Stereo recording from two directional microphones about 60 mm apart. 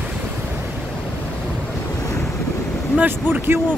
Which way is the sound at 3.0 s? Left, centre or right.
Right.